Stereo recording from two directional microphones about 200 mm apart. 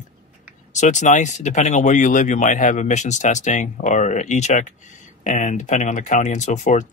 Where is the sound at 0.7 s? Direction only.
35° left (ahead or behind).